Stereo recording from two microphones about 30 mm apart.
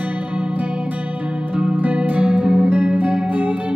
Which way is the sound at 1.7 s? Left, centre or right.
Right.